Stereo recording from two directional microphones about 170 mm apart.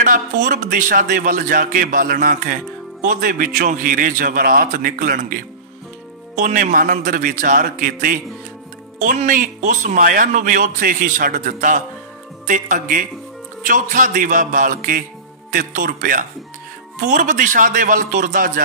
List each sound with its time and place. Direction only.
0.0 s speech: 50° right (ahead or behind)